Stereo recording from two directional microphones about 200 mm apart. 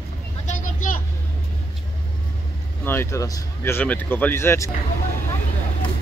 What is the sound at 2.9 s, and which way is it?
Speech, 15° left (ahead or behind).